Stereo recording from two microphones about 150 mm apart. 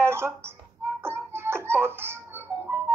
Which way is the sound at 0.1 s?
15° right (ahead or behind).